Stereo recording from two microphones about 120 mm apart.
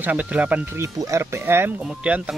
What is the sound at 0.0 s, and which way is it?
Speech, 10° right (ahead or behind).